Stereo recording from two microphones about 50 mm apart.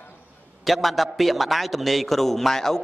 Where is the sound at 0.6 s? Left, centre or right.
Centre.